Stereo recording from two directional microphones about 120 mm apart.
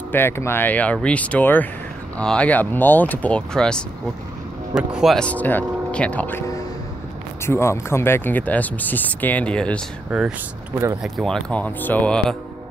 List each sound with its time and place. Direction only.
0.1 s speech: 20° left (ahead or behind); by 5.2 s centre (ahead or behind)
5.2 s speech: 15° left (ahead or behind)
7.4 s speech: 20° left (ahead or behind)
10.1 s speech: centre (ahead or behind)